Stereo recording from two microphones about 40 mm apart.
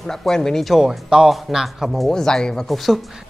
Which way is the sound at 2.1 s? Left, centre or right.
Centre.